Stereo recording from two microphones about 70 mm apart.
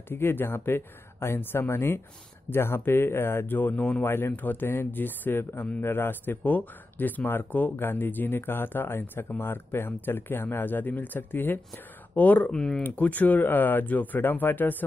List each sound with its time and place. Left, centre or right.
0.1 s speech: left
4.0 s speech: left
12.5 s speech: centre
12.8 s speech: left